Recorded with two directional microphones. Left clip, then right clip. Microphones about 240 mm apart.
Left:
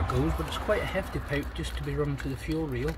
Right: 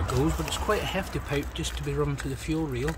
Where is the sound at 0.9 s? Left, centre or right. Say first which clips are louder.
Right 1 dB; centre.